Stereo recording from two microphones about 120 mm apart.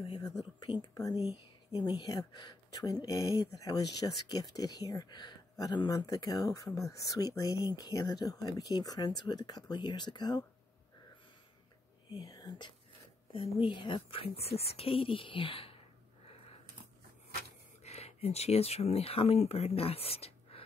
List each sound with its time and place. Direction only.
0.9 s speech: 30° left (ahead or behind)
1.7 s speech: 45° left (ahead or behind)
12.1 s speech: 30° left (ahead or behind)
13.3 s speech: 50° left (ahead or behind)
17.8 s speech: 60° left (ahead or behind)